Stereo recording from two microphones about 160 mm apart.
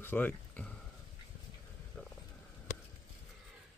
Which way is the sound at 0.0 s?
10° left (ahead or behind).